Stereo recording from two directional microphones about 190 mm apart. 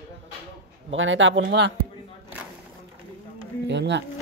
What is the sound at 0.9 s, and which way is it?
Speech, 90° right.